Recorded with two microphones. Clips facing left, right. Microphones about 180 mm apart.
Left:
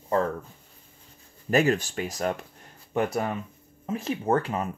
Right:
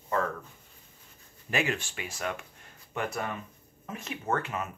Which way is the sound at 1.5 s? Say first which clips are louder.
Left 8 dB; 40° left (ahead or behind).